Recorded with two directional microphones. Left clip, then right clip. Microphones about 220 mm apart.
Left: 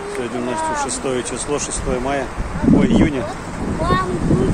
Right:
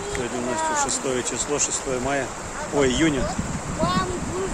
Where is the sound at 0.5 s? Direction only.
Centre (ahead or behind).